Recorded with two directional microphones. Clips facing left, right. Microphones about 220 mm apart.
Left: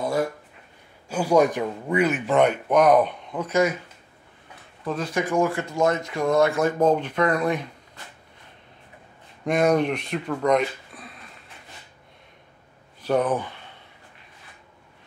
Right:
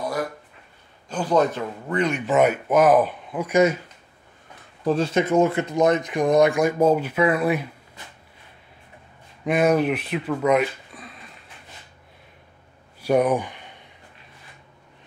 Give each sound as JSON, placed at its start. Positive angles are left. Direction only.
{"t": 0.0, "sound": "a sound", "side_deg": 25}
{"t": 1.0, "sound": "speech", "side_deg": 10}
{"t": 4.8, "sound": "speech", "side_deg": -30}
{"t": 9.4, "sound": "speech", "side_deg": -5}
{"t": 13.0, "sound": "speech", "side_deg": -10}